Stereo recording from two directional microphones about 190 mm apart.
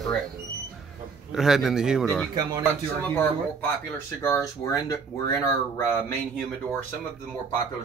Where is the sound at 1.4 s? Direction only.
Centre (ahead or behind).